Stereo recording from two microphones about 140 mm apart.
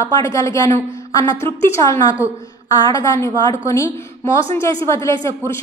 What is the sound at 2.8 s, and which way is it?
A woman's voice, 25° left (ahead or behind).